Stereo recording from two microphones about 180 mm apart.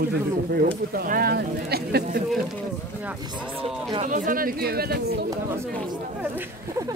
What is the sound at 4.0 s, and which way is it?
Speech, 45° right (ahead or behind).